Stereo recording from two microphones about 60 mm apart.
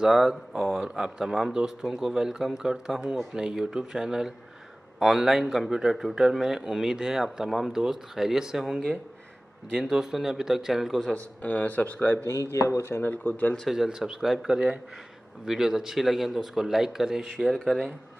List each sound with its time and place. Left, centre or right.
0.0 s speech: centre
9.8 s speech: centre
11.4 s speech: left
12.3 s speech: left
13.1 s speech: left
13.7 s speech: centre
17.2 s speech: centre